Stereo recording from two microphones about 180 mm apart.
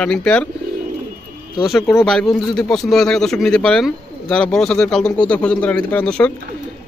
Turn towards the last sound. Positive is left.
turn(degrees=5)  # may be behind; listen again after turning